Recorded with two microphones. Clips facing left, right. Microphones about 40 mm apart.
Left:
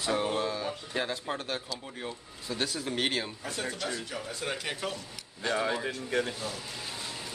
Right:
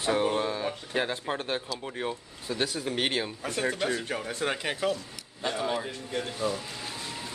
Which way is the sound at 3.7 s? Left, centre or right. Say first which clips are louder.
Right 5 dB; right.